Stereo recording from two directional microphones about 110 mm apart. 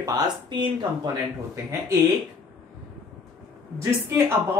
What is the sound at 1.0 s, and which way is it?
Speech, 25° right (ahead or behind).